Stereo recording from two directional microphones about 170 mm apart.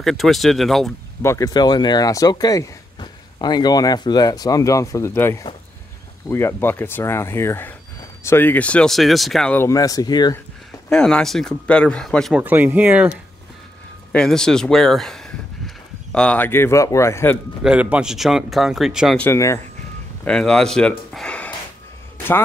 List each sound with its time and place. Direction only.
0.0 s speech: centre (ahead or behind)
1.2 s speech: 20° left (ahead or behind)
9.7 s speech: 20° left (ahead or behind)
10.9 s speech: 5° left (ahead or behind)
12.4 s speech: 10° right (ahead or behind)
14.1 s speech: 5° left (ahead or behind)
17.6 s speech: 5° right (ahead or behind)
19.1 s speech: 15° left (ahead or behind)
20.2 s speech: 5° left (ahead or behind)